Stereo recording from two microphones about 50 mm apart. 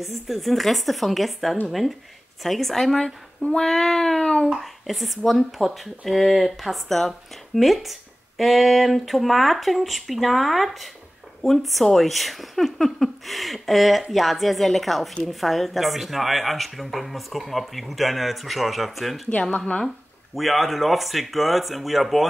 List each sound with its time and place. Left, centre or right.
0.0 s speech: centre
3.5 s child singing: centre
4.6 s speech: centre
19.5 s child singing: centre
20.3 s speech: centre